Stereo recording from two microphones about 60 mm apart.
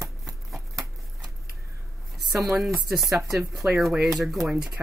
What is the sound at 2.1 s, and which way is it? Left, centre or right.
Speech, centre.